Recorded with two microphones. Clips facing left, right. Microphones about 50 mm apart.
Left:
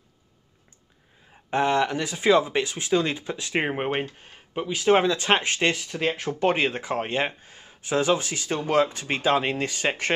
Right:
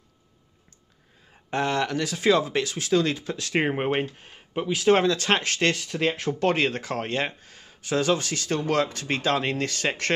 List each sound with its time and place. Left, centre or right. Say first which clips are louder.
1.3 s speech: left 3 dB; centre
3.6 s speech: right 1 dB; centre
5.0 s speech: left 1 dB; centre
6.5 s speech: even; centre